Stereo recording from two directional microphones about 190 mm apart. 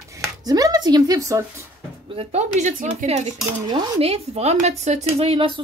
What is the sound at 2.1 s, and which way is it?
Speech, 40° right (ahead or behind).